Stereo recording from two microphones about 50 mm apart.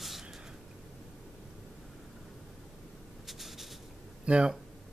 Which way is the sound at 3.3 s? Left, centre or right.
Centre.